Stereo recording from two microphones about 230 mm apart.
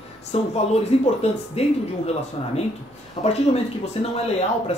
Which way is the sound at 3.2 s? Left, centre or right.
Left.